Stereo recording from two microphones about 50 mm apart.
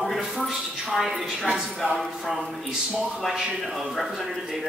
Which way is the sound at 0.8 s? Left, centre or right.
Centre.